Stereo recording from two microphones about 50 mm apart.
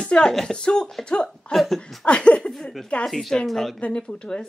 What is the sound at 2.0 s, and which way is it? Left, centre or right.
Speech, left.